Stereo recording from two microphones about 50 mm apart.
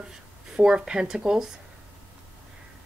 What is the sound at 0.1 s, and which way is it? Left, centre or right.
Speech, centre.